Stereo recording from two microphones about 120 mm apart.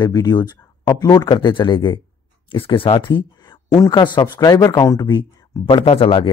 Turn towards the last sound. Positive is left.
turn(degrees=45)  # may be behind; listen again after turning